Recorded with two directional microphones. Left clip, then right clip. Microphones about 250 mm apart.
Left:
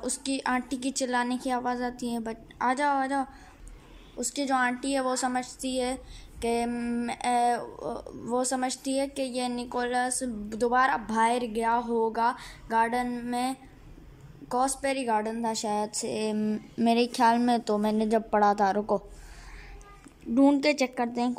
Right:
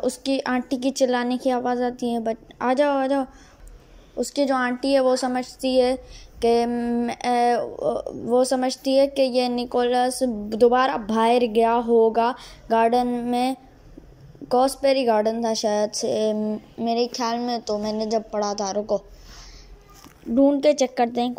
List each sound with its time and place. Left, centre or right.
0.0 s speech: centre
18.0 s a woman's voice: left
20.3 s speech: centre